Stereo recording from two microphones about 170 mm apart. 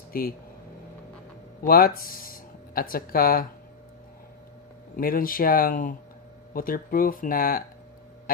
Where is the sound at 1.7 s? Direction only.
60° left (ahead or behind).